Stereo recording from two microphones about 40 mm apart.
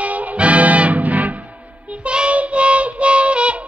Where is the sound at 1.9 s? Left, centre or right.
Right.